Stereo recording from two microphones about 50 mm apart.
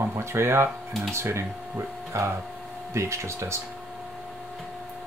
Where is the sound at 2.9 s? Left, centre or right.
Right.